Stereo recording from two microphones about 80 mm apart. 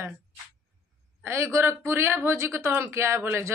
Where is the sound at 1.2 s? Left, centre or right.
Right.